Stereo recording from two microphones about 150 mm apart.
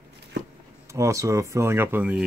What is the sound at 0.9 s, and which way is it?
Speech, 20° right (ahead or behind).